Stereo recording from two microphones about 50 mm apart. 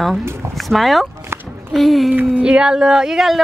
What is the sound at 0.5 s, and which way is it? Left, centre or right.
Speech, centre.